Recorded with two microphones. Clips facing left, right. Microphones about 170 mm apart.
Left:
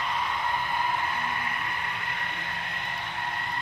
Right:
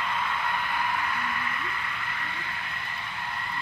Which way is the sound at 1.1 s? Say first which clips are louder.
Even; 35° left (ahead or behind).